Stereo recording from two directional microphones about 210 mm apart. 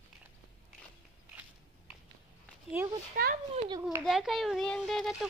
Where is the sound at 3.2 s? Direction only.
40° right (ahead or behind).